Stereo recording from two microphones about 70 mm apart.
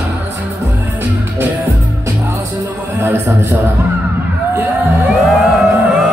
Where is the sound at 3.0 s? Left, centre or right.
Right.